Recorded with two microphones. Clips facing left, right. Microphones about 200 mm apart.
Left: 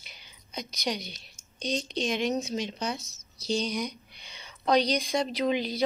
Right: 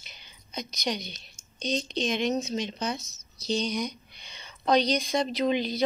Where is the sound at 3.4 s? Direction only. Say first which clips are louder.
Right 1 dB; 10° left (ahead or behind).